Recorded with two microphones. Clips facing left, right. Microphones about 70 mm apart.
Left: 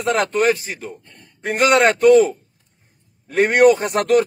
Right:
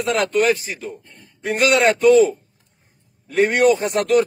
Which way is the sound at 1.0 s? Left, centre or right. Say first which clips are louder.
Even; left.